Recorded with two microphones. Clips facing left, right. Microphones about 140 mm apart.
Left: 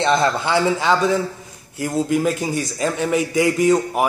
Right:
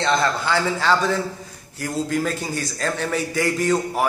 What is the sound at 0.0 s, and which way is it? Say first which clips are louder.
A man's voice: left 3 dB; 20° left (ahead or behind).